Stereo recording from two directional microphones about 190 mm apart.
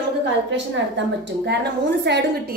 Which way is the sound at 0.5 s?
70° right (ahead or behind).